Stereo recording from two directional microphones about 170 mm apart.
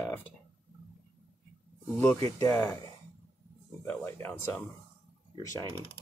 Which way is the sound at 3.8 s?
10° left (ahead or behind).